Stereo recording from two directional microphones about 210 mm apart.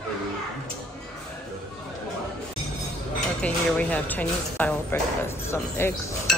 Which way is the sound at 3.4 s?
5° left (ahead or behind).